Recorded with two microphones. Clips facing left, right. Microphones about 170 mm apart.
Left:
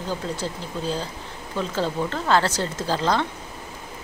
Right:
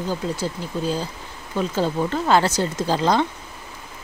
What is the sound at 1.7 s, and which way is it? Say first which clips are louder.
Speech: right 3 dB; 10° right (ahead or behind).